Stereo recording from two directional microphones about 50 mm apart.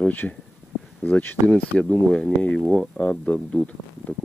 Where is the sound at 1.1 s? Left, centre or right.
Left.